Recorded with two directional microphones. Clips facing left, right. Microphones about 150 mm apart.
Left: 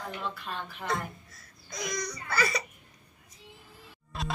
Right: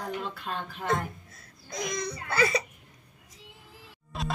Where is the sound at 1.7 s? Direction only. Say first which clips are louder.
Right 2 dB; 25° right (ahead or behind).